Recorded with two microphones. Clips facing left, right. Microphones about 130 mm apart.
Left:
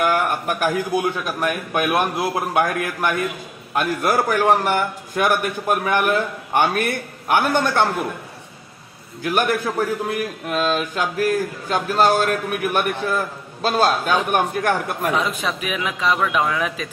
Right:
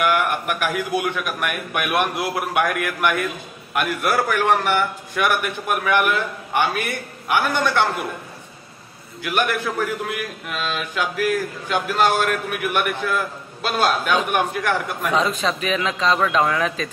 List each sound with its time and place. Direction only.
0.0 s a man's voice: 40° left (ahead or behind)
9.2 s a man's voice: 40° left (ahead or behind)
15.1 s a man's voice: 10° left (ahead or behind)